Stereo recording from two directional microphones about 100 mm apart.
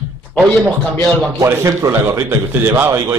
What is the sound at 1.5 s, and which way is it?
Speech, 30° right (ahead or behind).